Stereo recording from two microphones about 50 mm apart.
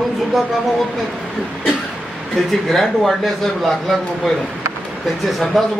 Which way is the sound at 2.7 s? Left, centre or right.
Centre.